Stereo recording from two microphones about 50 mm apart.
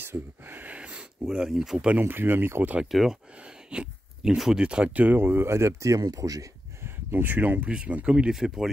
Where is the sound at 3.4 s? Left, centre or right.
Centre.